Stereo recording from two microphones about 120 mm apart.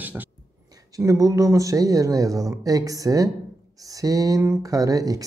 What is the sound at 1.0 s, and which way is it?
Speech, 30° right (ahead or behind).